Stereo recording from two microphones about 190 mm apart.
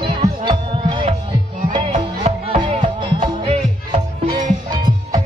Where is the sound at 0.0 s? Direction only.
30° right (ahead or behind).